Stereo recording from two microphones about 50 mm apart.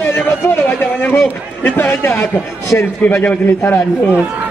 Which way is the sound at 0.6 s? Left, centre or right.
Left.